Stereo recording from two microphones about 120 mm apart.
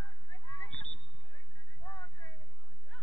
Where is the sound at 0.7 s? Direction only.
10° left (ahead or behind).